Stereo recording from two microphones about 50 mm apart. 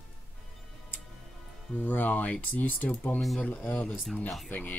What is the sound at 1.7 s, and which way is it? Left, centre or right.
Speech, left.